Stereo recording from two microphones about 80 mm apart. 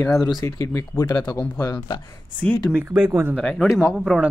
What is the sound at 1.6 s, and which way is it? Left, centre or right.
Speech, left.